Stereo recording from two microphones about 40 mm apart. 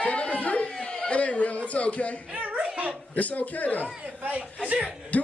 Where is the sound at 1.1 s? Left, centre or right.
Left.